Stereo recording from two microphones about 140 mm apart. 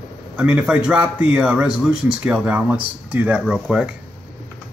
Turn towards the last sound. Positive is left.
turn(degrees=-5)  # may be behind; listen again after turning